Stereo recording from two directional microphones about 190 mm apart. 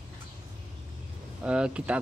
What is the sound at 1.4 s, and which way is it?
Speech, 5° right (ahead or behind).